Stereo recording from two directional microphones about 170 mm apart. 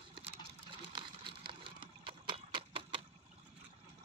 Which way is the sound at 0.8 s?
30° right (ahead or behind).